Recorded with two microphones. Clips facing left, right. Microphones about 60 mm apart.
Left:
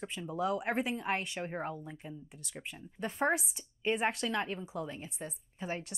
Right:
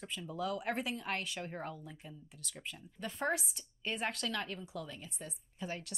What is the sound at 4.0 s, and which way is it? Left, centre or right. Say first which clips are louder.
Speech: left 1 dB; centre.